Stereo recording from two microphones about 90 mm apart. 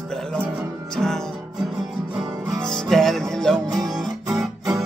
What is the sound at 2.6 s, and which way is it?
Music, 5° left (ahead or behind).